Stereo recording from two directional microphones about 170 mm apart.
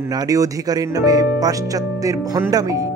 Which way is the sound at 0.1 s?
20° right (ahead or behind).